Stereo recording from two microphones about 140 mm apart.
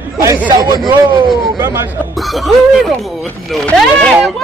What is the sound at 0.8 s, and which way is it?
Speech, 30° right (ahead or behind).